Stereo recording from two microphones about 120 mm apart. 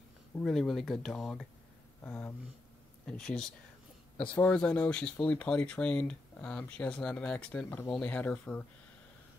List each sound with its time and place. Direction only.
0.4 s speech: 5° left (ahead or behind)
2.0 s speech: 15° left (ahead or behind)